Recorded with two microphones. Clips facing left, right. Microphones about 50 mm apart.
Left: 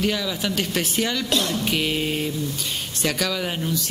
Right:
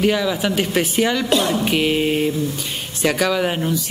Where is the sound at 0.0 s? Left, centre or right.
Centre.